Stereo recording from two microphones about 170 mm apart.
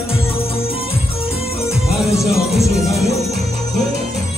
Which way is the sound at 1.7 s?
Centre (ahead or behind).